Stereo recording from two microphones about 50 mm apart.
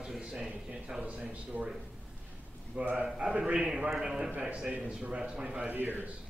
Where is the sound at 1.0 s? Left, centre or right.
Right.